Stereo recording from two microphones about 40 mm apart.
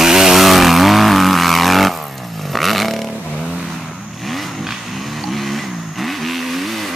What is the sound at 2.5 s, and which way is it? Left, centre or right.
Vehicle, centre.